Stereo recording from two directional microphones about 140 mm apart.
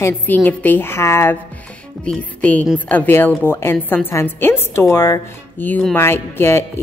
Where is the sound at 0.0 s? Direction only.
10° left (ahead or behind).